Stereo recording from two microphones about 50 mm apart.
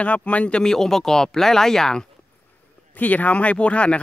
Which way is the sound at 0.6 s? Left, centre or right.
Centre.